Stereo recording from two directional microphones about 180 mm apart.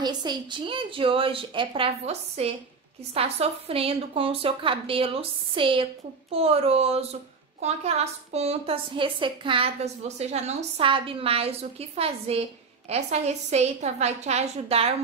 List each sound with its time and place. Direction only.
0.0 s a woman's voice: 25° right (ahead or behind)